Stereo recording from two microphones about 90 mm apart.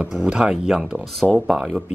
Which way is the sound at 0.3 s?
5° right (ahead or behind).